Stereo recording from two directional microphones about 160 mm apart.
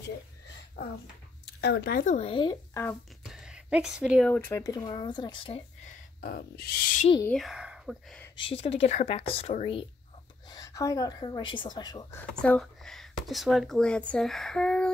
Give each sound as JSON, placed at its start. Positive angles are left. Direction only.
{"t": 1.4, "sound": "speech", "side_deg": 90}
{"t": 2.0, "sound": "speech", "side_deg": 40}
{"t": 2.7, "sound": "speech", "side_deg": 15}
{"t": 3.3, "sound": "a sound", "side_deg": -5}
{"t": 4.3, "sound": "speech", "side_deg": 15}
{"t": 5.9, "sound": "speech", "side_deg": 70}
{"t": 7.2, "sound": "speech", "side_deg": 0}
{"t": 8.4, "sound": "speech", "side_deg": 35}
{"t": 10.5, "sound": "speech", "side_deg": 20}
{"t": 12.4, "sound": "speech", "side_deg": 5}